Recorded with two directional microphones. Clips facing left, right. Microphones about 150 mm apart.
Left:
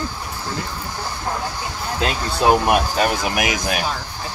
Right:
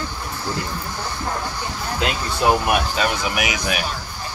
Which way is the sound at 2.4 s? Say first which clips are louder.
Left 3 dB; 20° left (ahead or behind).